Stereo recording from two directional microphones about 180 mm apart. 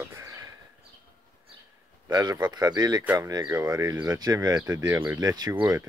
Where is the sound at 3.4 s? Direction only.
10° right (ahead or behind).